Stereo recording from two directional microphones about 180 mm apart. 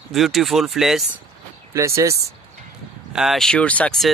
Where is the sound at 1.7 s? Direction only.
15° right (ahead or behind).